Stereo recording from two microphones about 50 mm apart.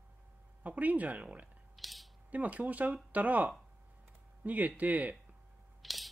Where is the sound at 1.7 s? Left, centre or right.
Centre.